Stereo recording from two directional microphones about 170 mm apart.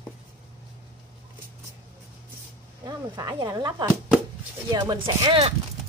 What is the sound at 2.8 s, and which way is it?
Speech, 20° right (ahead or behind).